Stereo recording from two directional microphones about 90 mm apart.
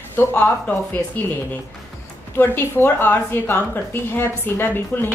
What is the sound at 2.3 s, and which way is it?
A woman's voice, 25° left (ahead or behind).